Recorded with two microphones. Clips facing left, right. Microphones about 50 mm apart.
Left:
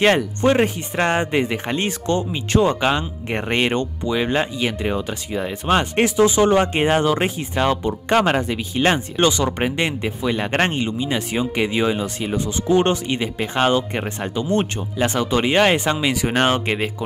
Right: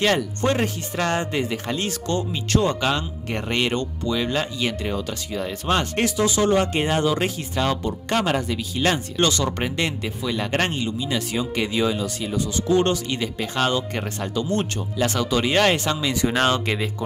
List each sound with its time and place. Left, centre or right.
0.0 s speech: left